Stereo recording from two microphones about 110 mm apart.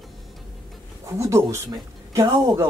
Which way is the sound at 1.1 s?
25° right (ahead or behind).